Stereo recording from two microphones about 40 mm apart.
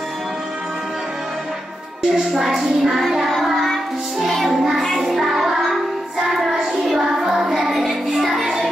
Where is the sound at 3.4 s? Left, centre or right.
Centre.